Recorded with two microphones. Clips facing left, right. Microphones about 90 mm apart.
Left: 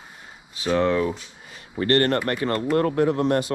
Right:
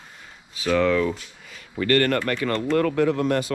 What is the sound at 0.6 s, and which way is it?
Speech, 30° left (ahead or behind).